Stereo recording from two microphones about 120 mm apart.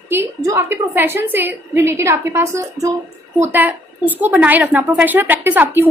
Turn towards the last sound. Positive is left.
turn(degrees=-15)  # may be behind; listen again after turning